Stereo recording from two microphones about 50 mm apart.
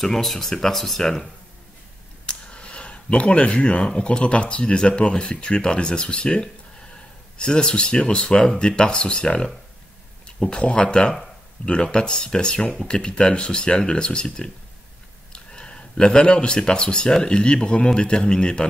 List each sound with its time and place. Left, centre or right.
0.0 s speech: centre
2.2 s speech: left